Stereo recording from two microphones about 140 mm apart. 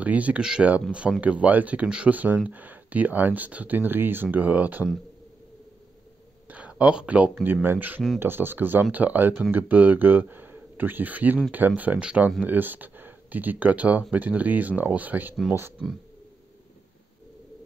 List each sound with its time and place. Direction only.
0.0 s speech: 10° right (ahead or behind)
6.5 s speech: 10° right (ahead or behind)